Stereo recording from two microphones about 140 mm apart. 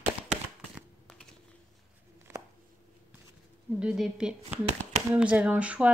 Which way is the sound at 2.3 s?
15° right (ahead or behind).